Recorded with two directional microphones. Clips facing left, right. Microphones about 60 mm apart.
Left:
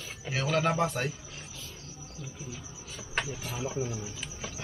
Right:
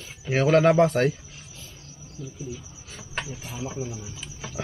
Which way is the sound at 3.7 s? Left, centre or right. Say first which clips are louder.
Even; centre.